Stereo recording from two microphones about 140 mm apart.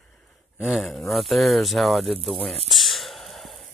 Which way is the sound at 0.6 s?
Centre (ahead or behind).